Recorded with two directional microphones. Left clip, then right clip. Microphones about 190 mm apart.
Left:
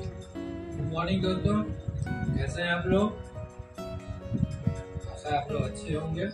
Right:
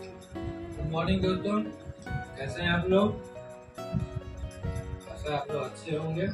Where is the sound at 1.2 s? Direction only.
Centre (ahead or behind).